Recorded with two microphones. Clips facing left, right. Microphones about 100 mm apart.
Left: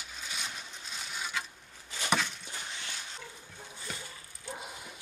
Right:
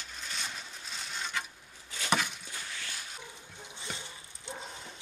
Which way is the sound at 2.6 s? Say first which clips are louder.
Even; 20° left (ahead or behind).